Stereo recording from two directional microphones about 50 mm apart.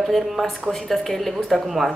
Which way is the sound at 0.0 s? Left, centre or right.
Centre.